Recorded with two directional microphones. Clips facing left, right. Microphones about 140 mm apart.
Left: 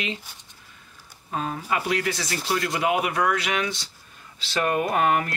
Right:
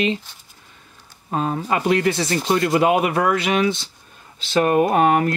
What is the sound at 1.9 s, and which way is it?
Speech, 25° right (ahead or behind).